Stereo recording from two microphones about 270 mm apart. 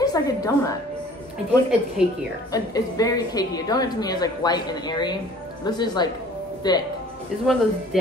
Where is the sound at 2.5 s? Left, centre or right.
Centre.